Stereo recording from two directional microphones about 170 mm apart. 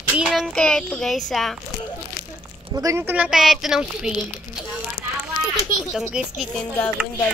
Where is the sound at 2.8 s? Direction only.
15° right (ahead or behind).